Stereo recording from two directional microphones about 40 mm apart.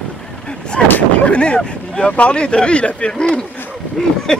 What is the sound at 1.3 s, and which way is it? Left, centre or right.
Speech, left.